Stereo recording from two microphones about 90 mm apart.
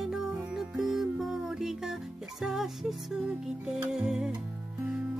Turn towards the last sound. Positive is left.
turn(degrees=-5)  # may be behind; listen again after turning